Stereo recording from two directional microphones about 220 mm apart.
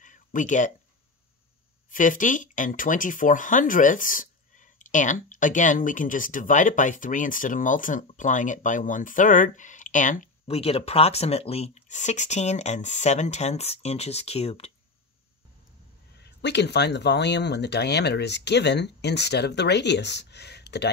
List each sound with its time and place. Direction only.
0.0 s a sound: 35° left (ahead or behind)
1.9 s speech: 35° left (ahead or behind)
16.2 s speech: 50° left (ahead or behind)